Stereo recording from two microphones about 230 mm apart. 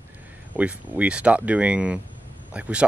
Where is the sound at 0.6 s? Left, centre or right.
Centre.